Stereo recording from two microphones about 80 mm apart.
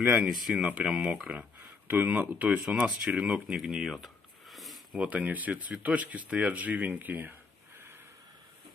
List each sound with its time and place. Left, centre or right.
0.0 s speech: centre
4.9 s speech: centre